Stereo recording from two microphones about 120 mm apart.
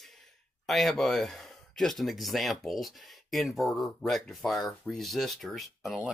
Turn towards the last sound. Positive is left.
turn(degrees=0)  # may be behind; listen again after turning